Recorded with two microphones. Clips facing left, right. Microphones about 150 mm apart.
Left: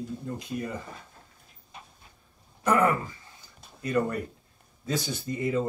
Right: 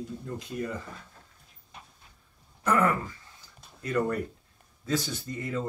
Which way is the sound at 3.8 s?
10° left (ahead or behind).